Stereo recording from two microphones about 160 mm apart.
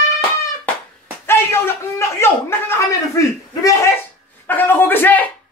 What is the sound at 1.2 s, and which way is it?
Speech, 15° left (ahead or behind).